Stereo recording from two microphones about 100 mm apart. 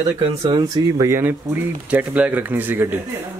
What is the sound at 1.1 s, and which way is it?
Speech, 25° right (ahead or behind).